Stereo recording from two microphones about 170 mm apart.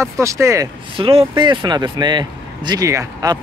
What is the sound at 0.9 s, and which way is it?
Speech, 30° right (ahead or behind).